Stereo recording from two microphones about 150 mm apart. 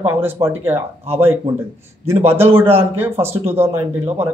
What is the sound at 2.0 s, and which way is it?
Speech, 15° right (ahead or behind).